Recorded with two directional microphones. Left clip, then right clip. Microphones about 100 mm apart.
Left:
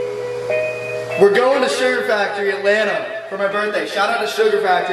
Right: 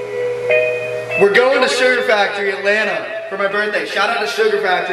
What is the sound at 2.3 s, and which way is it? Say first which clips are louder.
A man's voice: even; 10° left (ahead or behind).